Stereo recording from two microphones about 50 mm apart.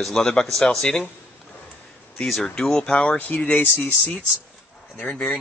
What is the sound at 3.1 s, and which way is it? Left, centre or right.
Speech, left.